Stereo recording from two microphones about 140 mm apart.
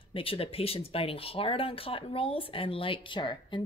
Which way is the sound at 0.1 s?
40° left (ahead or behind).